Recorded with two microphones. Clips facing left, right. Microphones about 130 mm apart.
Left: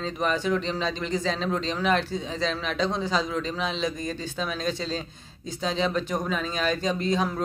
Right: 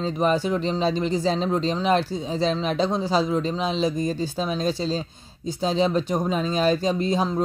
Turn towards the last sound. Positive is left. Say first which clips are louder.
# right 3 dB
turn(degrees=-30)  # may be behind; listen again after turning